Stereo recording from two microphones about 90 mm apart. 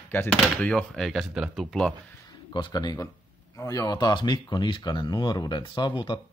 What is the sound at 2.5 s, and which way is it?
Speech, 55° left (ahead or behind).